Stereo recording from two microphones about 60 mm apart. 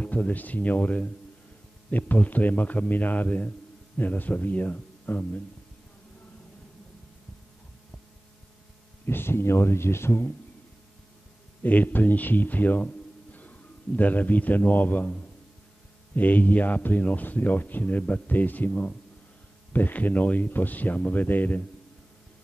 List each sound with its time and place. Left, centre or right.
0.0 s a man's voice: left
9.0 s speech: left
11.6 s a man's voice: left
19.7 s a man's voice: left